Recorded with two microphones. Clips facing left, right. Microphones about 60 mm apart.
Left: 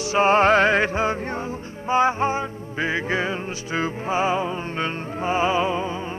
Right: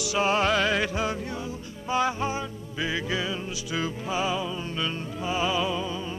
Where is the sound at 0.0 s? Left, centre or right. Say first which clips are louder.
Left 7 dB; left.